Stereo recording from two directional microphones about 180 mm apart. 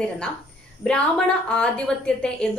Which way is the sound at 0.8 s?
5° left (ahead or behind).